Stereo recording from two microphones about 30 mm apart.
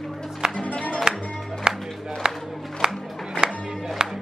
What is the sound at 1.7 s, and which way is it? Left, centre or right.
Music, right.